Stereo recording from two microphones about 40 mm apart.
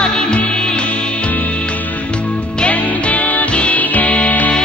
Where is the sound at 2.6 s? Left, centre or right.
Left.